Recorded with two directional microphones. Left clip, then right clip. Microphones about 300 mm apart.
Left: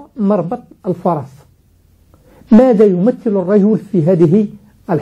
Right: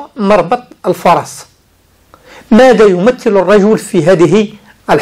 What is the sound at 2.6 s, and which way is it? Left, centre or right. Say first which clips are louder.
A man's voice: right 5 dB; centre.